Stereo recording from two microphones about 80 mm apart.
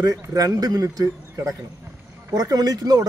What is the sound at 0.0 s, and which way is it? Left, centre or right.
A man's voice, right.